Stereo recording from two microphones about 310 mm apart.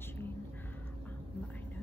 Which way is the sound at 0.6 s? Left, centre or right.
Centre.